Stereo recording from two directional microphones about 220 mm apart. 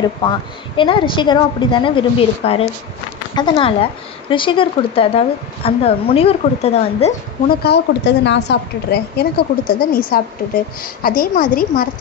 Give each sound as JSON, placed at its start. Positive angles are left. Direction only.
{"t": 0.2, "sound": "speech", "side_deg": 20}
{"t": 7.6, "sound": "a woman's voice", "side_deg": 50}